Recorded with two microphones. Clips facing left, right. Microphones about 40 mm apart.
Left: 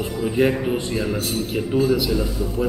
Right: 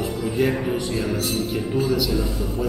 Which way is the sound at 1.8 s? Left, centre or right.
Centre.